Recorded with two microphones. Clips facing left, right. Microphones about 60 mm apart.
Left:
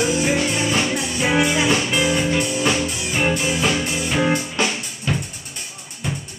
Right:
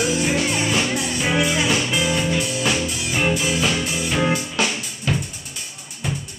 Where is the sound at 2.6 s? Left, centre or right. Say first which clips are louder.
Left 2 dB; left.